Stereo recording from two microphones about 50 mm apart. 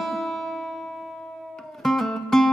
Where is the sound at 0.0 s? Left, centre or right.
Centre.